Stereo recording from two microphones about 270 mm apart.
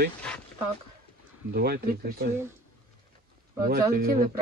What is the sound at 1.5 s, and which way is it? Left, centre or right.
Speech, right.